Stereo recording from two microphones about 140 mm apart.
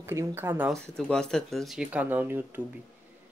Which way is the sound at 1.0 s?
5° left (ahead or behind).